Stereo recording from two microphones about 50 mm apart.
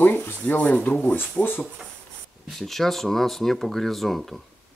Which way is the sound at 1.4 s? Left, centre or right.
Left.